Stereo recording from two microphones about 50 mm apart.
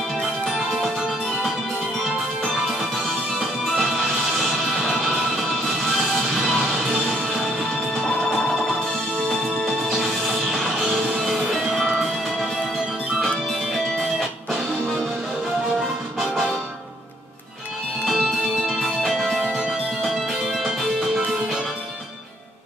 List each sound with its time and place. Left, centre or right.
0.2 s music: centre
3.3 s music: centre
6.1 s music: centre
9.3 s music: centre
15.8 s music: centre
18.2 s music: centre